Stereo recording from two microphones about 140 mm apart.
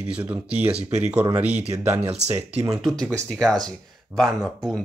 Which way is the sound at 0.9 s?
55° right (ahead or behind).